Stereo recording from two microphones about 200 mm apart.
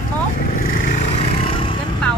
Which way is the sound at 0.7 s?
35° left (ahead or behind).